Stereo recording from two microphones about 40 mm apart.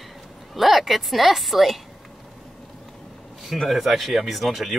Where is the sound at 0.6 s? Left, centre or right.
Centre.